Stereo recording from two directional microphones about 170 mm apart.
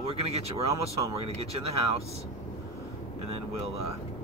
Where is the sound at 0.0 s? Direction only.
35° right (ahead or behind).